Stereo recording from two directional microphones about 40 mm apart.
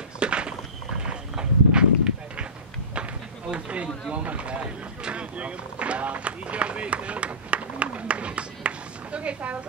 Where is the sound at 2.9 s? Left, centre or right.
Right.